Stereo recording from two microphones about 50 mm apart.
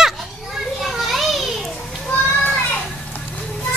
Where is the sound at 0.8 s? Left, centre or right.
Centre.